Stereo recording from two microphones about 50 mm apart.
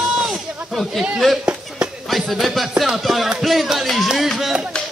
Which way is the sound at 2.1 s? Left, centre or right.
Centre.